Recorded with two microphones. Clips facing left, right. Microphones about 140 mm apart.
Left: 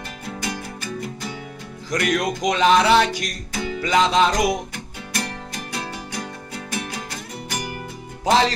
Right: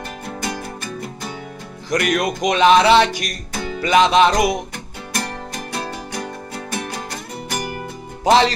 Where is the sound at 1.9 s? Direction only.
65° right (ahead or behind).